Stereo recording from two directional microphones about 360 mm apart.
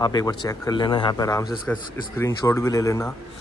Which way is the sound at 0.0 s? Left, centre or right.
Centre.